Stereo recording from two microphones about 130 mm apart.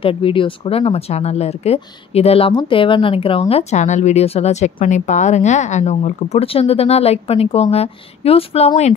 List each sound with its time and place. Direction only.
0.0 s speech: 45° left (ahead or behind)